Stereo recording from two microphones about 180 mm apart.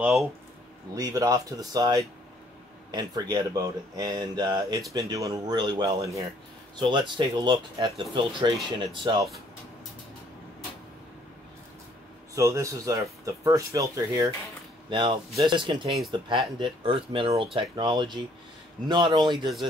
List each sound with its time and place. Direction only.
0.0 s speech: centre (ahead or behind)
0.9 s speech: 20° right (ahead or behind)
12.4 s speech: 20° right (ahead or behind)